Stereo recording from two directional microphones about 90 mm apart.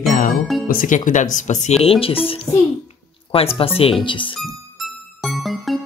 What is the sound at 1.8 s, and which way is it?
Speech, 90° left.